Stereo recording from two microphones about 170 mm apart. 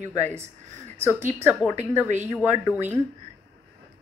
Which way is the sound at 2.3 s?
10° right (ahead or behind).